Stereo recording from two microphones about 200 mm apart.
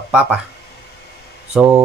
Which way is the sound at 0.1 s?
5° right (ahead or behind).